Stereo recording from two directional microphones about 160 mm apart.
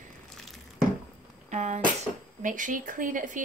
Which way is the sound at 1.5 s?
45° right (ahead or behind).